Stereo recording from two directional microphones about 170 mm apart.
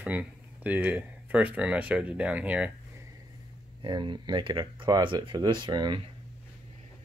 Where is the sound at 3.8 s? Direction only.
30° right (ahead or behind).